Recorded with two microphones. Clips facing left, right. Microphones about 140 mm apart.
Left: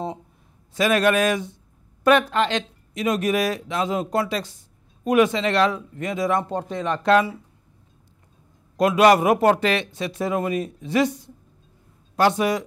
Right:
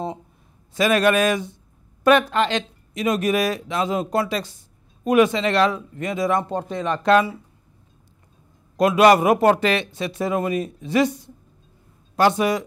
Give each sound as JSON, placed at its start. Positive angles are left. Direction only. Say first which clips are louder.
{"t": 0.7, "sound": "speech", "louder": "right 1 dB", "side_deg": -5}
{"t": 6.4, "sound": "speech", "louder": "right 1 dB", "side_deg": -20}
{"t": 8.7, "sound": "speech", "louder": "right 1 dB", "side_deg": -5}
{"t": 12.2, "sound": "speech", "louder": "right 1 dB", "side_deg": -5}